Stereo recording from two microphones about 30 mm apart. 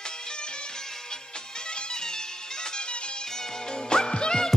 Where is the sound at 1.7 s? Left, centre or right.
Left.